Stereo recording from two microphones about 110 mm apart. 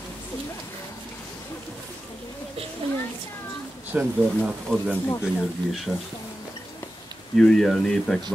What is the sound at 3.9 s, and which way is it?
Speech, 15° right (ahead or behind).